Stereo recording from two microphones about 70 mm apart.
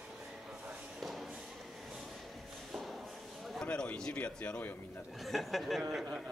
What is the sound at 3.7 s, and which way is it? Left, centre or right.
Speech, centre.